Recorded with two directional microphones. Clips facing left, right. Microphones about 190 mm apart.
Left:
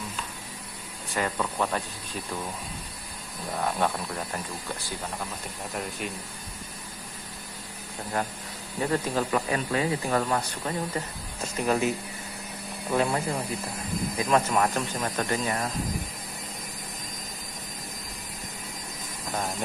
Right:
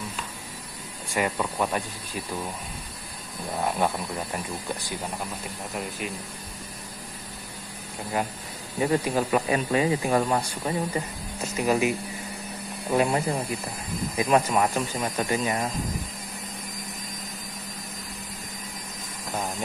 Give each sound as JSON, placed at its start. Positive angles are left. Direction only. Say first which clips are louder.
{"t": 1.1, "sound": "speech", "louder": "right 2 dB", "side_deg": -10}
{"t": 3.6, "sound": "speech", "louder": "right 1 dB", "side_deg": -10}
{"t": 5.7, "sound": "speech", "louder": "even", "side_deg": 0}
{"t": 8.7, "sound": "speech", "louder": "right 3 dB", "side_deg": -10}
{"t": 12.9, "sound": "speech", "louder": "right 3 dB", "side_deg": -15}